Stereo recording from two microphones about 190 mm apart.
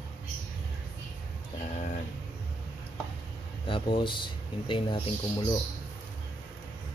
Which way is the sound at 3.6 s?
25° left (ahead or behind).